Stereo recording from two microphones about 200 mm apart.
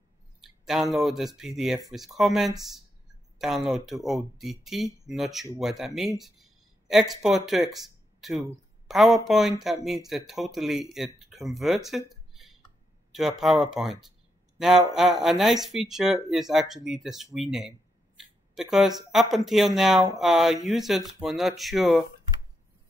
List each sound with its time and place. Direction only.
0.4 s speech: centre (ahead or behind)
13.1 s speech: centre (ahead or behind)
15.0 s speech: centre (ahead or behind)